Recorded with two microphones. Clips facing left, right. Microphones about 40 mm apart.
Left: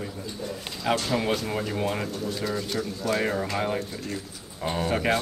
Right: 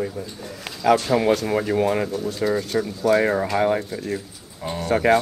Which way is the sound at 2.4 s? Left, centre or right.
Right.